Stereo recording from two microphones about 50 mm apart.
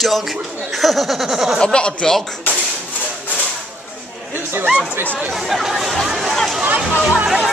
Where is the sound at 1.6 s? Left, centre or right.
Centre.